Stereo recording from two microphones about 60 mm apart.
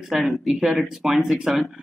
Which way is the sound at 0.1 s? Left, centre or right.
Centre.